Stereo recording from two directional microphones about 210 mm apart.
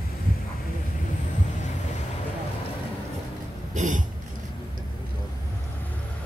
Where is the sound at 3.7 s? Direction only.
35° right (ahead or behind).